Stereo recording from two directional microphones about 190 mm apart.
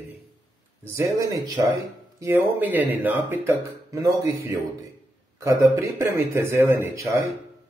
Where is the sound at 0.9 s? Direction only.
15° right (ahead or behind).